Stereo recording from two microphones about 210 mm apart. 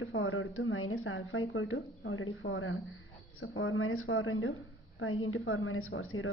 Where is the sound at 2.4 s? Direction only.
70° left (ahead or behind).